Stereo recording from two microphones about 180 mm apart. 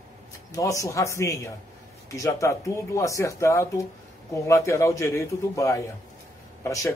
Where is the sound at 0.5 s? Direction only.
20° left (ahead or behind).